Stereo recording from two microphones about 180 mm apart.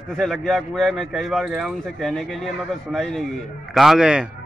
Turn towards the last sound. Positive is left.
turn(degrees=-5)  # may be behind; listen again after turning